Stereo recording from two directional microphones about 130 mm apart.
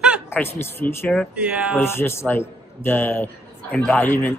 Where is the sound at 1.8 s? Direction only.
20° left (ahead or behind).